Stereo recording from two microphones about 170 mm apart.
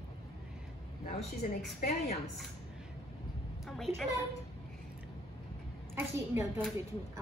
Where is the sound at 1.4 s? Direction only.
45° left (ahead or behind).